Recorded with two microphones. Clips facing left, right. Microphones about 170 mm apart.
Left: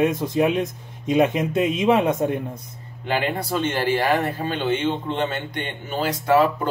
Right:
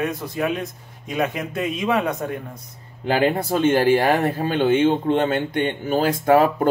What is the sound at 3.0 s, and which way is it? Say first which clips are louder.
Speech: right 5 dB; 45° right (ahead or behind).